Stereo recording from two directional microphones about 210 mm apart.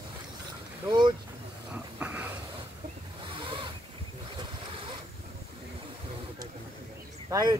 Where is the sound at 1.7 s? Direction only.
5° right (ahead or behind).